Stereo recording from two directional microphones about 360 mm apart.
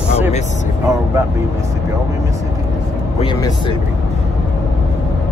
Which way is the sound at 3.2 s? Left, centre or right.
Centre.